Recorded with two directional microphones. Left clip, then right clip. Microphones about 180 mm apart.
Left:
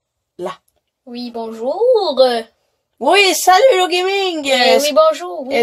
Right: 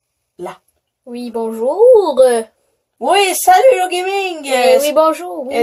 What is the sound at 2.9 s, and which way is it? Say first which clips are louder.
Speech: left 1 dB; 30° left (ahead or behind).